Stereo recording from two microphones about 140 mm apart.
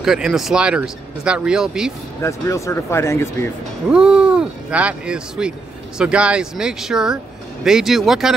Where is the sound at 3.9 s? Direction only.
5° right (ahead or behind).